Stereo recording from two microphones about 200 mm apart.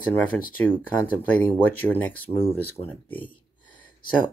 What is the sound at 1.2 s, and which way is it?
Speech, 10° left (ahead or behind).